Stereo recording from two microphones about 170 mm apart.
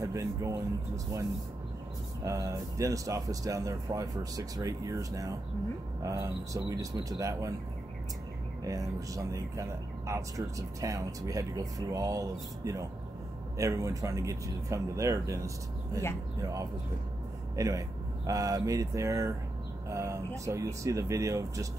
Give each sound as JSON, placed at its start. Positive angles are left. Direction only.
{"t": 0.0, "sound": "speech", "side_deg": -20}
{"t": 2.2, "sound": "speech", "side_deg": -20}
{"t": 8.6, "sound": "speech", "side_deg": -20}